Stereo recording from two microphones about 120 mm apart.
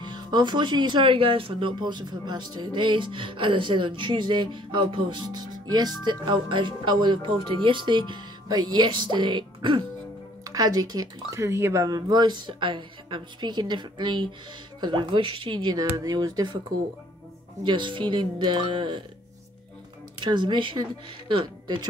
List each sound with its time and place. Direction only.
0.0 s speech: 35° right (ahead or behind)
17.6 s speech: 40° right (ahead or behind)
20.2 s speech: 40° right (ahead or behind)